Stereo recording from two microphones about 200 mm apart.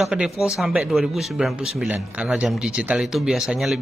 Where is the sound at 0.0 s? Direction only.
5° right (ahead or behind).